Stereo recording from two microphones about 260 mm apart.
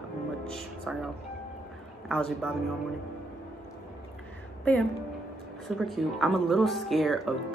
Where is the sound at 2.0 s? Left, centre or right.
Centre.